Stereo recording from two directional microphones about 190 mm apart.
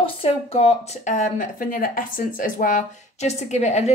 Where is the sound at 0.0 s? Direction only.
30° left (ahead or behind).